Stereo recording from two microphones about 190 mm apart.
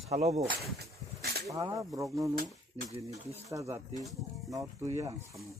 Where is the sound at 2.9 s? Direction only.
35° right (ahead or behind).